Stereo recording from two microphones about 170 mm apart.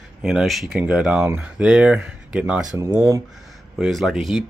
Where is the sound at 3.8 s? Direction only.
Centre (ahead or behind).